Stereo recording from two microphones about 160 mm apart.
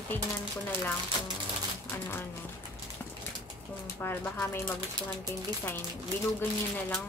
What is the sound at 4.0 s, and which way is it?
Speech, 15° left (ahead or behind).